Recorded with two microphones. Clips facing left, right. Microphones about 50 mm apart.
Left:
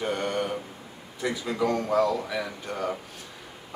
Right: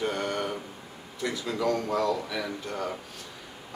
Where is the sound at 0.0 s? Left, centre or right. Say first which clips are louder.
Left 2 dB; centre.